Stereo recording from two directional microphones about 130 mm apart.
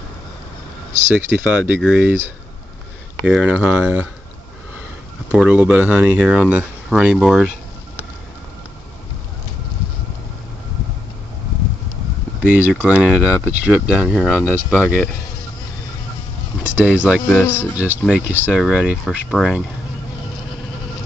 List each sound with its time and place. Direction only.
1.1 s speech: 10° right (ahead or behind)
2.0 s speech: 20° right (ahead or behind)
3.3 s speech: 5° right (ahead or behind)
5.3 s speech: 10° right (ahead or behind)
12.4 s speech: 15° right (ahead or behind)
14.0 s speech: 5° left (ahead or behind)
14.3 s speech: 10° right (ahead or behind)
16.6 s speech: 10° right (ahead or behind)